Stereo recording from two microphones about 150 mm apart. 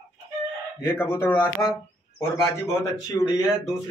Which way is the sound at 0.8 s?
15° left (ahead or behind).